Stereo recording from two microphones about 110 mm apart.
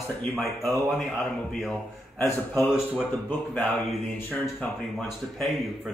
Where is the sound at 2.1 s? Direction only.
20° left (ahead or behind).